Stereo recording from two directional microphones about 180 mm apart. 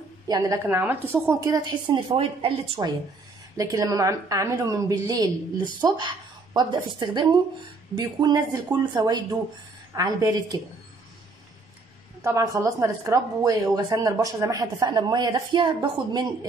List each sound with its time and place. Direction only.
0.3 s a woman's voice: 20° right (ahead or behind)
3.5 s a woman's voice: 20° right (ahead or behind)
12.2 s a woman's voice: 15° right (ahead or behind)